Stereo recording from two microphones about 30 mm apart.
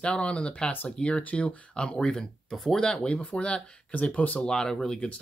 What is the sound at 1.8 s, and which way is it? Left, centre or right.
Speech, left.